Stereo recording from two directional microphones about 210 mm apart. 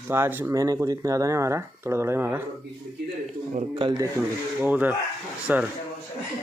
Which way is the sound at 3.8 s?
20° right (ahead or behind).